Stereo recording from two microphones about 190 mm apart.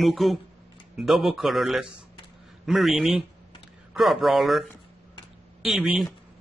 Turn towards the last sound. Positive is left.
turn(degrees=-5)  # may be behind; listen again after turning